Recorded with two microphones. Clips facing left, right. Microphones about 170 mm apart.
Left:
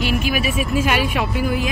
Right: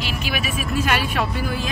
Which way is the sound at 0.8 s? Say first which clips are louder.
Left 2 dB; 15° left (ahead or behind).